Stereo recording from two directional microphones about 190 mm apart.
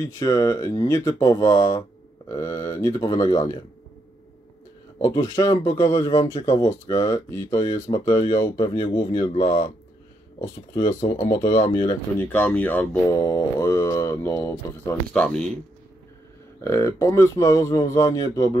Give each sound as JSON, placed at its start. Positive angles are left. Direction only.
{"t": 0.0, "sound": "speech", "side_deg": 15}
{"t": 5.0, "sound": "speech", "side_deg": 15}
{"t": 13.1, "sound": "speech", "side_deg": 20}
{"t": 16.6, "sound": "speech", "side_deg": 15}